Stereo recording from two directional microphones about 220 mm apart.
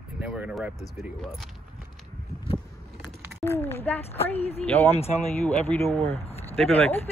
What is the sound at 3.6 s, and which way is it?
Speech, 10° left (ahead or behind).